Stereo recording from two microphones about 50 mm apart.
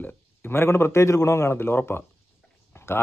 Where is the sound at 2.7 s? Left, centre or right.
Left.